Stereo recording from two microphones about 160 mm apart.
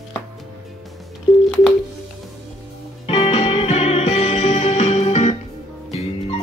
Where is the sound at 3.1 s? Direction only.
40° left (ahead or behind).